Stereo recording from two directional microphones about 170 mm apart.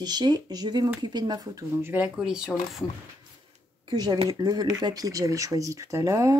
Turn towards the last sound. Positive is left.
turn(degrees=-20)  # may be behind; listen again after turning